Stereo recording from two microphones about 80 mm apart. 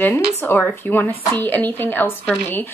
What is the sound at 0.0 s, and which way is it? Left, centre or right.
Speech, left.